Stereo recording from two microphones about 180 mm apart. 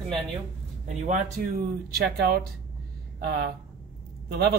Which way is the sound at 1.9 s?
60° right (ahead or behind).